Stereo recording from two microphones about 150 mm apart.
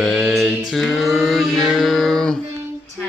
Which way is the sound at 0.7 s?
Centre (ahead or behind).